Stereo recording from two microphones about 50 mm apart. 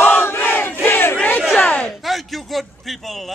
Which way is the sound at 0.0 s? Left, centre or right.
Left.